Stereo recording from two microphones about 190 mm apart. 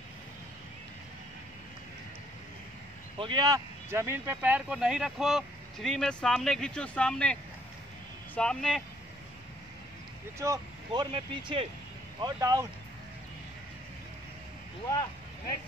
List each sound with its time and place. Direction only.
3.2 s speech: 25° right (ahead or behind); by 7.3 s 5° left (ahead or behind)
8.4 s speech: 5° left (ahead or behind)
10.4 s speech: 20° right (ahead or behind)